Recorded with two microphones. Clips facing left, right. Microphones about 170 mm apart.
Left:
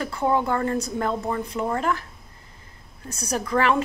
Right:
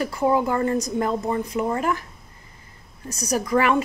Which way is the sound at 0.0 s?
10° right (ahead or behind).